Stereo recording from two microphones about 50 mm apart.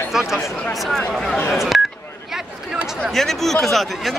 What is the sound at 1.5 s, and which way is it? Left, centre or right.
Speech, centre.